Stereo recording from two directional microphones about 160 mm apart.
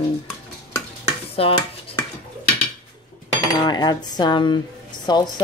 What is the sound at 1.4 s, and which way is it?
Dishes, 35° left (ahead or behind).